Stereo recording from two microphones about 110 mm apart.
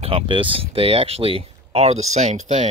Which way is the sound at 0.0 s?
50° right (ahead or behind).